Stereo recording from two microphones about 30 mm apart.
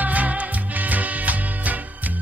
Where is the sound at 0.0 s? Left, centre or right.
Right.